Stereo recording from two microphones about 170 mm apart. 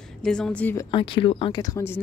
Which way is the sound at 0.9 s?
30° left (ahead or behind).